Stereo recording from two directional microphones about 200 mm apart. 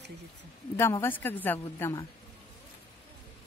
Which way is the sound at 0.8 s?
15° left (ahead or behind).